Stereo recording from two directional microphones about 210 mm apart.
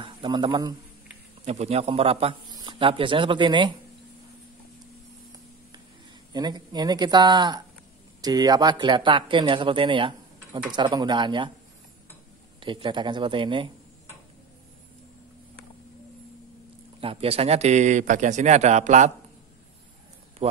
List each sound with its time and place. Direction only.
0.0 s speech: 25° right (ahead or behind)
6.3 s speech: 20° right (ahead or behind)
12.5 s speech: 25° right (ahead or behind)
17.0 s speech: 25° right (ahead or behind)